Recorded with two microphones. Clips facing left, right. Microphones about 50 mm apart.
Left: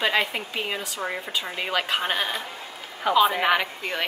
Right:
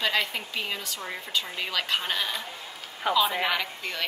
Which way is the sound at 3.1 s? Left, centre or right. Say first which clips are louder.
Left 4 dB; centre.